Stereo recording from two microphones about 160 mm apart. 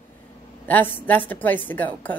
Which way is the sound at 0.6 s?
10° left (ahead or behind).